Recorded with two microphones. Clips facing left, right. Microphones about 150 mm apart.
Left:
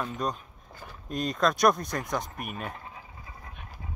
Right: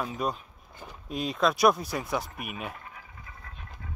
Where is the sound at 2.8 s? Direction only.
25° left (ahead or behind).